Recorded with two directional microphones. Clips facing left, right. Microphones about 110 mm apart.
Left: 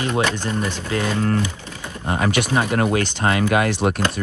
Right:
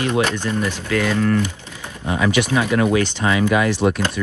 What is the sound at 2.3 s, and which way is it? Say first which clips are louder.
Speech: right 3 dB; 45° left (ahead or behind).